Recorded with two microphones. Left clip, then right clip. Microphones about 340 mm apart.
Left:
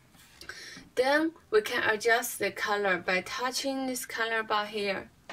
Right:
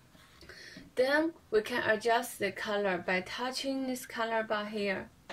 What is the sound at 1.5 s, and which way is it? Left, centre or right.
A woman's voice, left.